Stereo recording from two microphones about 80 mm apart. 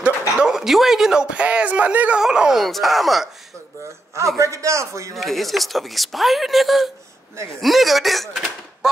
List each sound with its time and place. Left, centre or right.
0.4 s speech: centre
4.4 s a man's voice: right
5.1 s speech: centre
7.3 s a man's voice: right
7.6 s speech: centre